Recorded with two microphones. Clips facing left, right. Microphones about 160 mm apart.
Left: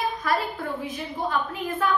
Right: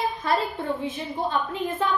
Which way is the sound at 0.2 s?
25° right (ahead or behind).